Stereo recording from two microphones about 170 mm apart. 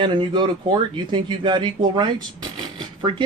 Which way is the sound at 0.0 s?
30° right (ahead or behind).